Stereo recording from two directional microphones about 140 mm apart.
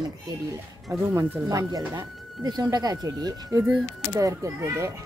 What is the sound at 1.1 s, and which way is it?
A child's voice, 20° right (ahead or behind).